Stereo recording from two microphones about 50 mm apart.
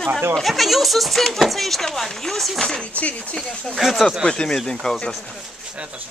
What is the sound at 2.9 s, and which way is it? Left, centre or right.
Speech, left.